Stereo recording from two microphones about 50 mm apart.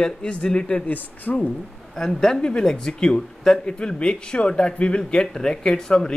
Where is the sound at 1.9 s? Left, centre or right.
Centre.